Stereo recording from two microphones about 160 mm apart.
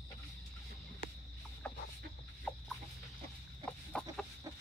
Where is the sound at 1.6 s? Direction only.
5° left (ahead or behind).